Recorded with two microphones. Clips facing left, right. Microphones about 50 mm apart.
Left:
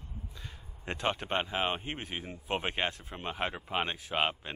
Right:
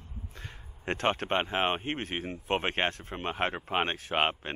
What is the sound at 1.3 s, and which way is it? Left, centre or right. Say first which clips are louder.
Speech: right 3 dB; right.